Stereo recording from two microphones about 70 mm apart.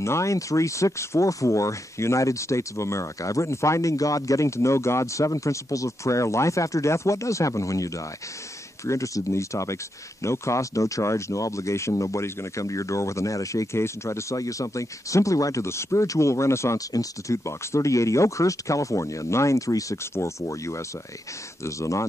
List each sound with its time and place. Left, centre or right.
0.0 s speech: left
16.9 s speech: left